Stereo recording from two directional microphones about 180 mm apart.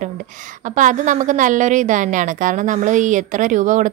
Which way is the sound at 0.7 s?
45° right (ahead or behind).